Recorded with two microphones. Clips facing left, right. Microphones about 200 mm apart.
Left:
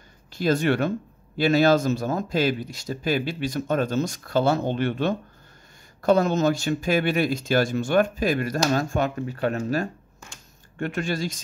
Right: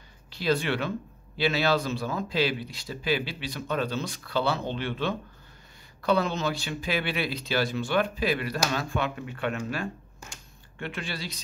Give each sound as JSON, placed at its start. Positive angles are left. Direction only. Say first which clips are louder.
{"t": 0.3, "sound": "speech", "louder": "left 5 dB", "side_deg": 45}